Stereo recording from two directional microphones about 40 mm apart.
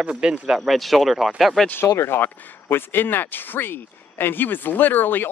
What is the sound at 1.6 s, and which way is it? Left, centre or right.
Speech, left.